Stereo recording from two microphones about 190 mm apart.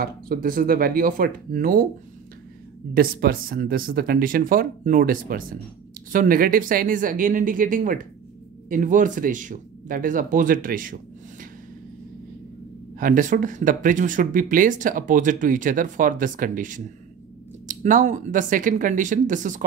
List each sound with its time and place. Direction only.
0.0 s speech: 50° right (ahead or behind)
2.9 s speech: 50° right (ahead or behind)
13.0 s speech: 45° right (ahead or behind)